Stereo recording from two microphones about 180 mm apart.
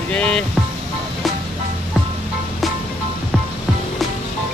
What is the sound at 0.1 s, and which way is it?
Speech, 5° left (ahead or behind).